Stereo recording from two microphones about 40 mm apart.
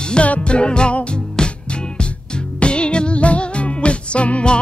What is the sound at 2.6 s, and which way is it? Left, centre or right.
Music, left.